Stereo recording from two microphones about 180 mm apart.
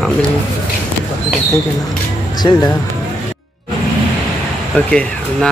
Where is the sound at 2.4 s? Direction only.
20° left (ahead or behind).